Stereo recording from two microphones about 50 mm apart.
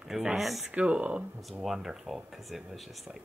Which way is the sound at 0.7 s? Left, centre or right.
Right.